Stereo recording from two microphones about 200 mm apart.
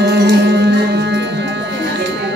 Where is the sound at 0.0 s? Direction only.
55° right (ahead or behind).